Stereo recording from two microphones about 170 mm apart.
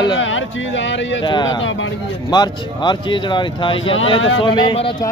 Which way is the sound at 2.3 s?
25° left (ahead or behind).